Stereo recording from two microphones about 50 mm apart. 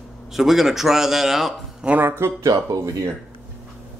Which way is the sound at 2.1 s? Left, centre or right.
Right.